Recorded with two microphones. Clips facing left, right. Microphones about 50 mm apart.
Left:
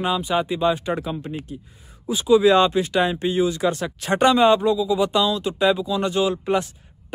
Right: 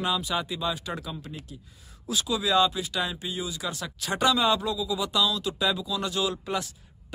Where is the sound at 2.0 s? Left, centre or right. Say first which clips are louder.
Left 4 dB; centre.